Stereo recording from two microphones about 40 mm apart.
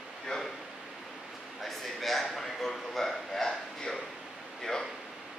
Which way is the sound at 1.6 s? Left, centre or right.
Centre.